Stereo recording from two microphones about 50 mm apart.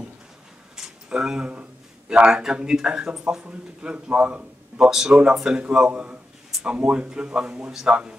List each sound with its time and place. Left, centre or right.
0.7 s a sound: centre
1.5 s speech: right
4.7 s speech: centre
5.9 s a man's voice: right